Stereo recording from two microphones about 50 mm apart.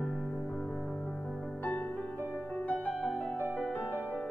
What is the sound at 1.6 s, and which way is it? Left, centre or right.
Music, left.